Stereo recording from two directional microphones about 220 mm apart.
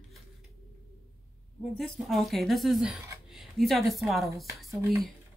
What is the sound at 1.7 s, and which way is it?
Speech, centre (ahead or behind).